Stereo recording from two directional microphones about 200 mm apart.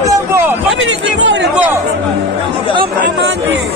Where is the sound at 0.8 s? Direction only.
60° right (ahead or behind).